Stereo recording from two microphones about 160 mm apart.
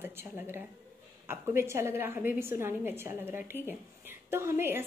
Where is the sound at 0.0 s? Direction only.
15° right (ahead or behind).